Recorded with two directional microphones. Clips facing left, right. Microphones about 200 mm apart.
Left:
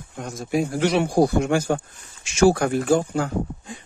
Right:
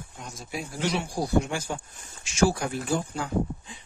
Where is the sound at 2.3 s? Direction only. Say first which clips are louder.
Left 7 dB; 70° left (ahead or behind); by 3.8 s 50° left (ahead or behind).